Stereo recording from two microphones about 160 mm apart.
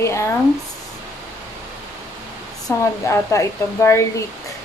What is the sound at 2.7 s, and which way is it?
Speech, 15° left (ahead or behind).